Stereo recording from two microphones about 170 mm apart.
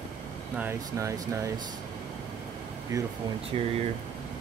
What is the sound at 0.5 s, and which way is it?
Speech, 15° right (ahead or behind).